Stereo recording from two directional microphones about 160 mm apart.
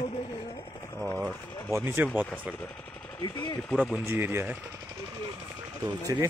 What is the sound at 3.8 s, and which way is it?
Speech, 15° right (ahead or behind).